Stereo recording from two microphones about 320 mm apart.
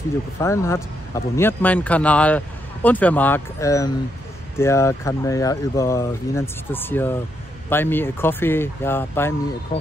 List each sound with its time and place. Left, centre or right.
0.4 s speech: centre